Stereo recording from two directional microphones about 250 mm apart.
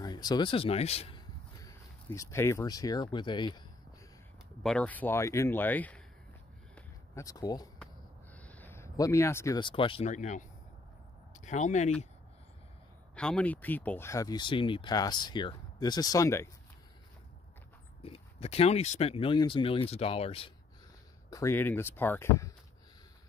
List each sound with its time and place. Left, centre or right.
0.0 s speech: centre
4.6 s speech: centre
6.7 s a sound: centre
8.4 s speech: centre; by 10.4 s left
11.4 s speech: left
13.1 s speech: centre
18.0 s speech: left
21.3 s speech: centre